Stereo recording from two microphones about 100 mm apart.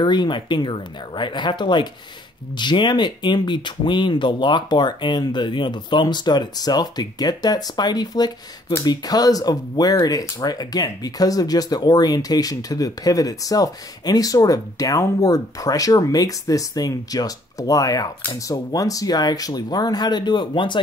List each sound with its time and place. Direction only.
0.0 s speech: 50° left (ahead or behind)